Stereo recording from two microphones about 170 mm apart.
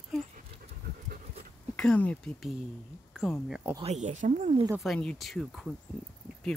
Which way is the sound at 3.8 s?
45° right (ahead or behind).